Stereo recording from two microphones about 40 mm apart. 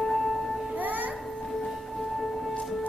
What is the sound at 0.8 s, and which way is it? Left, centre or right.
Music, right.